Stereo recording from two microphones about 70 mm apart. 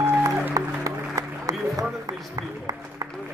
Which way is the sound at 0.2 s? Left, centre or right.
Right.